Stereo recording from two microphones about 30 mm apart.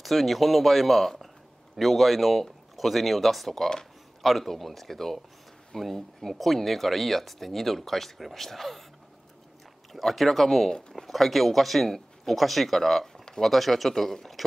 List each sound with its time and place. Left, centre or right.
0.0 s speech: centre
9.9 s speech: centre